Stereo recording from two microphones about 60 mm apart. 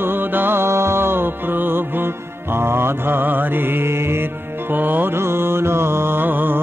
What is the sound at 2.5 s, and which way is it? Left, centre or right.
Mantra, right.